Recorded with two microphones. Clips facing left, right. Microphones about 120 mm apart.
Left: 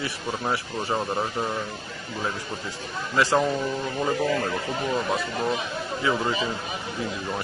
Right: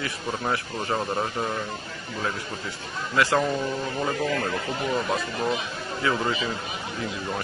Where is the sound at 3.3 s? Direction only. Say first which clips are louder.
Left 1 dB; 5° left (ahead or behind).